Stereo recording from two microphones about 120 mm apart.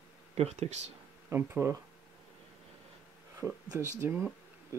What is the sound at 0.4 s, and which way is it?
Speech, 65° right (ahead or behind).